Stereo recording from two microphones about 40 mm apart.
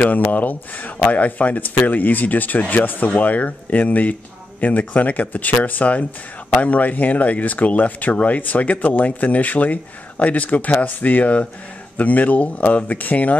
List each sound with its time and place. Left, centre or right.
0.0 s speech: left